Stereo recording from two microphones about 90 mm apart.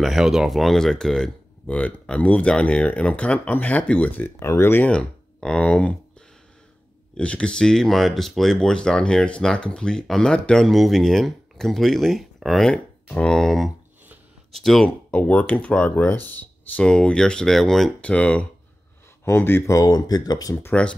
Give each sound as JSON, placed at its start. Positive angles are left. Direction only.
{"t": 0.0, "sound": "speech", "side_deg": 0}
{"t": 1.7, "sound": "speech", "side_deg": 15}
{"t": 4.8, "sound": "speech", "side_deg": 10}
{"t": 7.2, "sound": "speech", "side_deg": 10}
{"t": 14.9, "sound": "speech", "side_deg": 15}
{"t": 16.8, "sound": "speech", "side_deg": 10}
{"t": 19.2, "sound": "speech", "side_deg": 25}
{"t": 20.5, "sound": "speech", "side_deg": 15}